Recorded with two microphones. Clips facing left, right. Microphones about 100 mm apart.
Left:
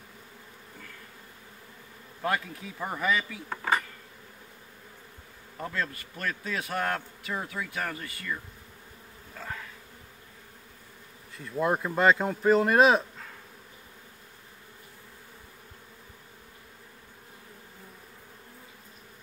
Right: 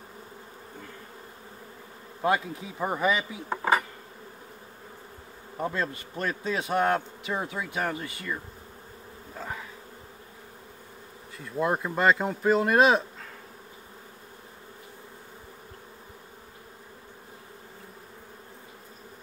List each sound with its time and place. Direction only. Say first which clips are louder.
2.2 s speech: right 4 dB; 20° right (ahead or behind)
5.6 s speech: right 4 dB; 25° right (ahead or behind)
9.3 s insect: right 2 dB; 15° right (ahead or behind)
11.3 s speech: even; centre (ahead or behind)